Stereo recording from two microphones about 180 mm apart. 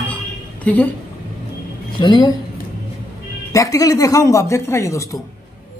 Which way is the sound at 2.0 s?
25° left (ahead or behind).